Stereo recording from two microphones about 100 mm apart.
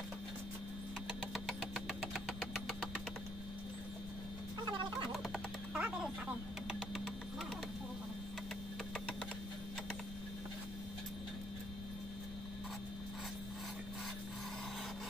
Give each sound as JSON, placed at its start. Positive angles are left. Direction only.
{"t": 1.3, "sound": "engine", "side_deg": 0}
{"t": 4.6, "sound": "fowl", "side_deg": -50}
{"t": 5.1, "sound": "a sound", "side_deg": -5}